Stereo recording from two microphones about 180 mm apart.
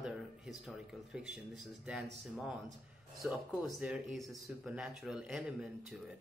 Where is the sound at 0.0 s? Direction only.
Centre (ahead or behind).